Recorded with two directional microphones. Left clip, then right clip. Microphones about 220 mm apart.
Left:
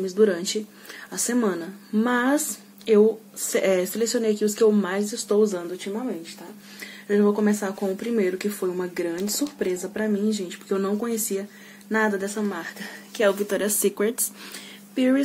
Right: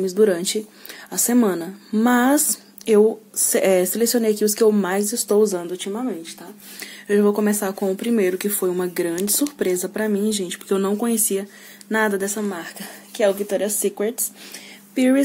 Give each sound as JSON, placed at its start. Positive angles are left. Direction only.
{"t": 0.0, "sound": "speech", "side_deg": -30}
{"t": 3.4, "sound": "speech", "side_deg": -35}
{"t": 7.1, "sound": "a woman's voice", "side_deg": -35}
{"t": 13.7, "sound": "speech", "side_deg": 0}
{"t": 15.0, "sound": "speech", "side_deg": -35}